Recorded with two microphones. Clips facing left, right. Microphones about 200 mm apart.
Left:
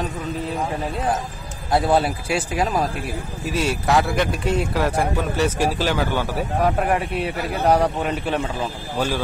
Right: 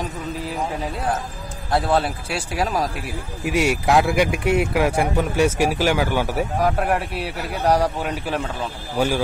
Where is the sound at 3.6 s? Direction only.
15° right (ahead or behind).